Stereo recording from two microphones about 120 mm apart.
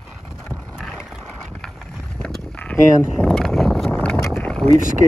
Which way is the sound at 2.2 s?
10° left (ahead or behind).